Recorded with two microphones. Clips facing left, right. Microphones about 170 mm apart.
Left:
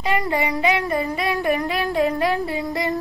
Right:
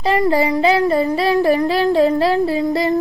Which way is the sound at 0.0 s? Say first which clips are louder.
Right 6 dB; 35° right (ahead or behind).